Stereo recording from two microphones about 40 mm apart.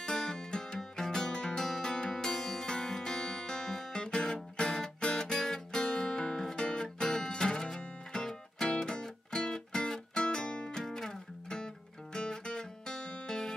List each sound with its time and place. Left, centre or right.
0.0 s music: centre
10.8 s music: centre